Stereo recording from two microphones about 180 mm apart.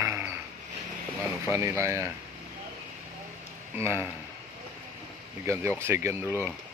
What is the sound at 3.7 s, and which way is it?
Speech, 15° right (ahead or behind).